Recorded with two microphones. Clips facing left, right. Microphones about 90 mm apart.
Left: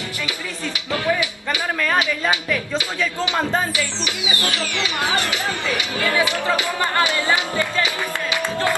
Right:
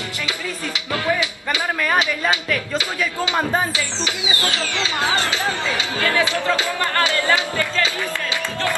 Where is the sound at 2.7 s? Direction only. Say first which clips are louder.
Even; 10° right (ahead or behind).